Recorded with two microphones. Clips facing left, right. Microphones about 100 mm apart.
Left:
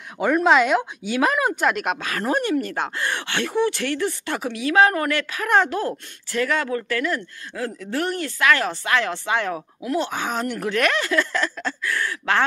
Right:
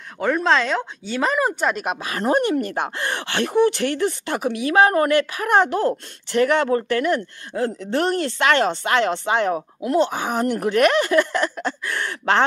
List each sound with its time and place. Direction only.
0.2 s speech: 10° left (ahead or behind)
2.0 s speech: 25° right (ahead or behind)
3.6 s speech: 45° right (ahead or behind)
4.0 s speech: 20° right (ahead or behind)